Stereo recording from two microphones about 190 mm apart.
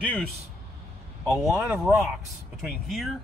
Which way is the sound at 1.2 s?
Centre (ahead or behind).